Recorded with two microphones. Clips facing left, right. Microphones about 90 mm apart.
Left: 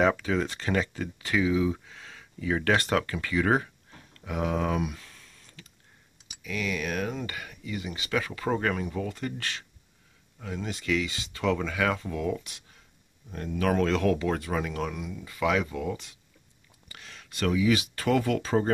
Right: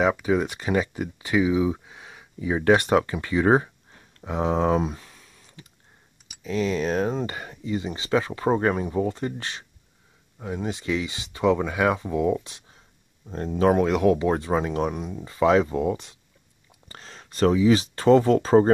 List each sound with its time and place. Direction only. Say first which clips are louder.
0.0 s speech: right 3 dB; 15° right (ahead or behind)
4.2 s a sound: right 5 dB; 30° right (ahead or behind)
6.4 s speech: right 7 dB; 30° right (ahead or behind)